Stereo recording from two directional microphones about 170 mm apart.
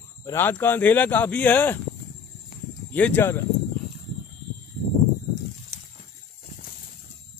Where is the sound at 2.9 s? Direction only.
10° left (ahead or behind).